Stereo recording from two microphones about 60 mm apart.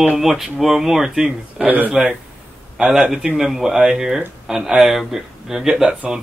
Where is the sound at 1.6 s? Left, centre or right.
Right.